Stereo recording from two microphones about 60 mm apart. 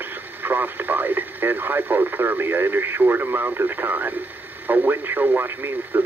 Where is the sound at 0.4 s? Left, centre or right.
Right.